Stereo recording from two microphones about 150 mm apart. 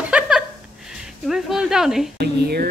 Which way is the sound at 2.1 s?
90° right.